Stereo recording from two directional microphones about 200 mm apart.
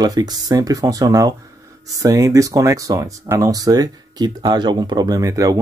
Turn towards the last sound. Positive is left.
turn(degrees=-15)  # may be behind; listen again after turning